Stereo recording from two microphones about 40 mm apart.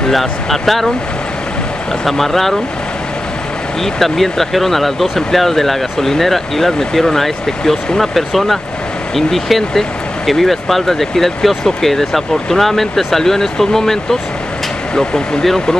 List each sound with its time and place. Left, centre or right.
0.1 s speech: centre
2.0 s speech: centre
3.8 s speech: centre
15.0 s speech: left